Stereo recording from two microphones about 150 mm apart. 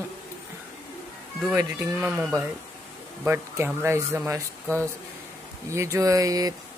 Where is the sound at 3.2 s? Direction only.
15° right (ahead or behind).